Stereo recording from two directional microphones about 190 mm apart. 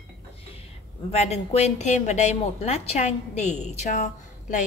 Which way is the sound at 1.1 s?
35° left (ahead or behind).